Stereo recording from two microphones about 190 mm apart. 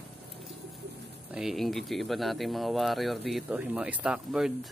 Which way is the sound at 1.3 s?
5° right (ahead or behind).